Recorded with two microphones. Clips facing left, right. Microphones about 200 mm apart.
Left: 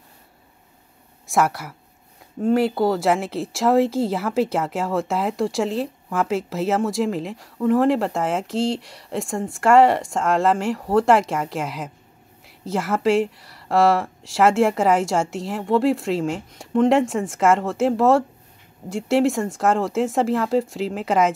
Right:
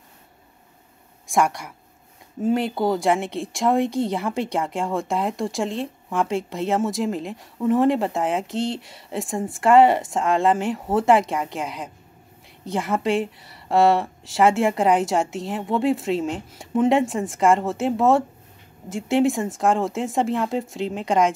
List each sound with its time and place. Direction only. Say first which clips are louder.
1.2 s speech: left 1 dB; centre (ahead or behind)